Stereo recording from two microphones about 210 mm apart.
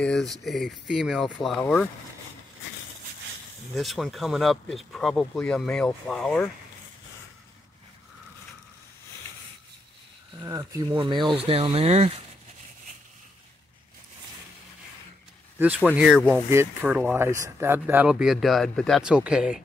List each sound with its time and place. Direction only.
0.0 s speech: centre (ahead or behind)
3.7 s speech: centre (ahead or behind)
10.4 s speech: 15° right (ahead or behind); by 12.1 s 30° right (ahead or behind)
16.0 s speech: centre (ahead or behind)
16.4 s speech: 10° right (ahead or behind)